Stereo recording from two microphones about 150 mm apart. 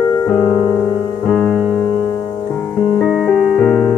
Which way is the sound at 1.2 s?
Centre (ahead or behind).